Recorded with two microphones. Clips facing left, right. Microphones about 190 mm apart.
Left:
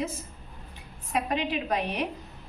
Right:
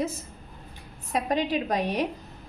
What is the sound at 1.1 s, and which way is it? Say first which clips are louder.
A woman's voice: right 2 dB; 40° right (ahead or behind).